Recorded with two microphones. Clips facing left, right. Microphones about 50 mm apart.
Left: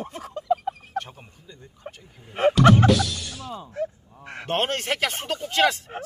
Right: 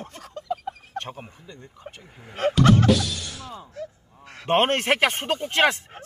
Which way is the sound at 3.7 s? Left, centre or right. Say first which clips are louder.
Left 7 dB; left.